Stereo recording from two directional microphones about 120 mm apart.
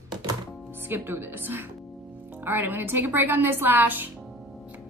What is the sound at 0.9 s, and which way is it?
A woman's voice, 20° right (ahead or behind).